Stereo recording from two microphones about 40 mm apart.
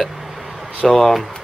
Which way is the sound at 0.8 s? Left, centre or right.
Centre.